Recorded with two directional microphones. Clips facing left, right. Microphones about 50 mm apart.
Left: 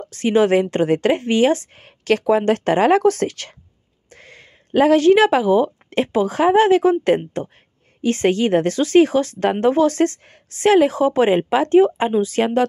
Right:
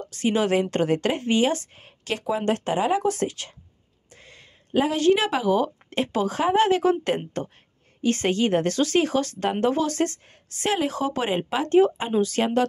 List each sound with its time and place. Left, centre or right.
0.0 s speech: left
4.1 s a sound: left
5.5 s speech: left